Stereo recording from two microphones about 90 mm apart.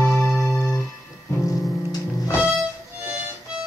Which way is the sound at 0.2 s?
20° left (ahead or behind).